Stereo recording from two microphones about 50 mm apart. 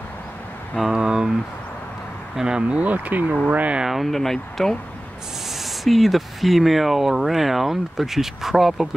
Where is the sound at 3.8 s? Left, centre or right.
Centre.